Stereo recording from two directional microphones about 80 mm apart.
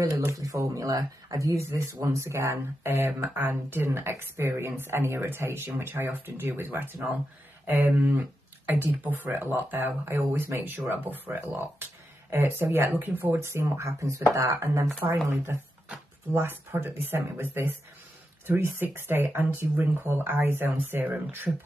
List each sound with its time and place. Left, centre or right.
0.0 s speech: right